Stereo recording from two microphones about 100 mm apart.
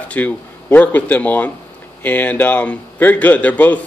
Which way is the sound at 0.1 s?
15° left (ahead or behind).